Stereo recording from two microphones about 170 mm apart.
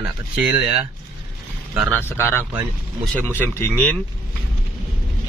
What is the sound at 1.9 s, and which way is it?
Speech, 10° left (ahead or behind).